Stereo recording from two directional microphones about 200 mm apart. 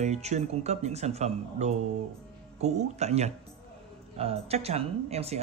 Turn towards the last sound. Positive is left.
turn(degrees=-30)  # may be behind; listen again after turning